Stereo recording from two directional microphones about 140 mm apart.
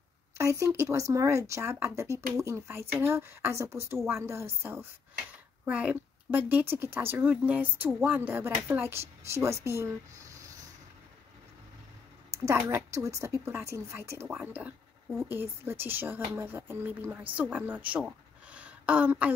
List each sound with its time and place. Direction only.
0.4 s a woman's voice: 20° right (ahead or behind)
12.4 s a woman's voice: 20° right (ahead or behind)